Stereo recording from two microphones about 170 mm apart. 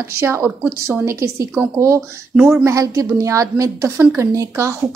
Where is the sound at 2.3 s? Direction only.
Centre (ahead or behind).